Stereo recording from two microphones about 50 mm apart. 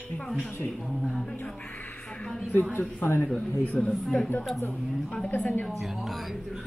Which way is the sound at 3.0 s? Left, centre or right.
Left.